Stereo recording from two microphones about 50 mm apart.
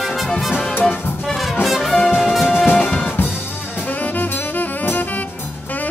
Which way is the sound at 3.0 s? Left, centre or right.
Left.